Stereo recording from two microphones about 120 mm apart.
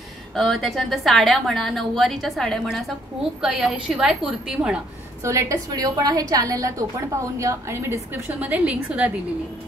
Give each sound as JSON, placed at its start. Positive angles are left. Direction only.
{"t": 0.4, "sound": "a woman's voice", "side_deg": 0}
{"t": 5.2, "sound": "a woman's voice", "side_deg": -25}